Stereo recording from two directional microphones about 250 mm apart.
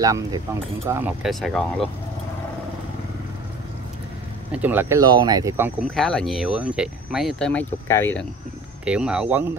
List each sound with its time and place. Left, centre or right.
0.0 s speech: centre
4.5 s speech: centre
5.8 s speech: centre
8.8 s speech: centre